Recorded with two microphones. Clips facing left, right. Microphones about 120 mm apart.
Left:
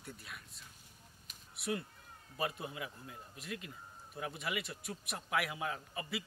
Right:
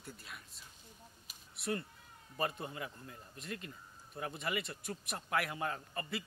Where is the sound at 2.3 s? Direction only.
Centre (ahead or behind).